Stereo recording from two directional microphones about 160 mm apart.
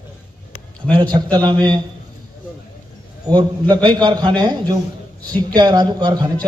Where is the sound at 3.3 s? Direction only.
25° right (ahead or behind).